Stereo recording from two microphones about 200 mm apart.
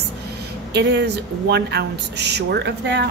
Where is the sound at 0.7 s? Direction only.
60° right (ahead or behind).